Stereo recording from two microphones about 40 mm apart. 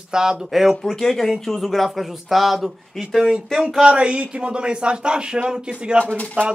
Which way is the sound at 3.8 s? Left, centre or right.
Right.